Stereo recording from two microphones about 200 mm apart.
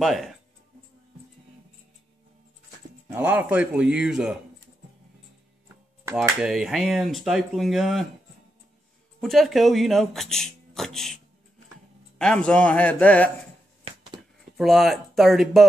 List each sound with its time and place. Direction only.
0.0 s speech: centre (ahead or behind)
3.1 s speech: 10° right (ahead or behind)
6.2 s speech: 5° right (ahead or behind)
9.2 s speech: centre (ahead or behind)
12.2 s a man's voice: 5° left (ahead or behind)
13.9 s a sound: 30° right (ahead or behind)
14.6 s speech: centre (ahead or behind)